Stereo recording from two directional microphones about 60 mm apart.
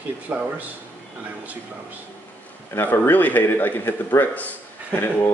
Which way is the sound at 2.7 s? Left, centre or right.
Left.